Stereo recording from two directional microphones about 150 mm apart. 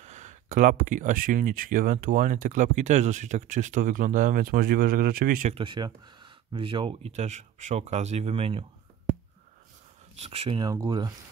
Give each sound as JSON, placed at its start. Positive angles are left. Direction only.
{"t": 0.0, "sound": "speech", "side_deg": -50}
{"t": 5.5, "sound": "speech", "side_deg": -35}
{"t": 10.2, "sound": "speech", "side_deg": -40}
{"t": 10.6, "sound": "speech", "side_deg": -25}